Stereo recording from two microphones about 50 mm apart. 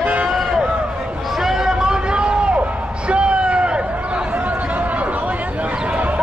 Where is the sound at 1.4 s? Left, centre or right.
Centre.